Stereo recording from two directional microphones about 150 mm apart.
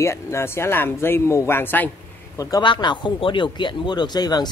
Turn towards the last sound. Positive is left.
turn(degrees=25)  # may be behind; listen again after turning